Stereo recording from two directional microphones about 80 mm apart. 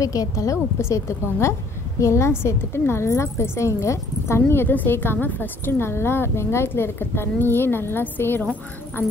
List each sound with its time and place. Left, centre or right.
0.0 s a woman's voice: left